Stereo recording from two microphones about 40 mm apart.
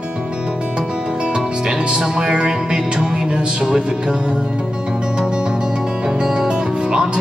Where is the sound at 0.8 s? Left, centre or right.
Right.